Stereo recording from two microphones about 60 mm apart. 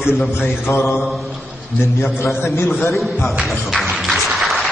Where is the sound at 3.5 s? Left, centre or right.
Centre.